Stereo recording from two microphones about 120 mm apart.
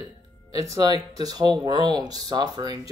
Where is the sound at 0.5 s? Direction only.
30° right (ahead or behind).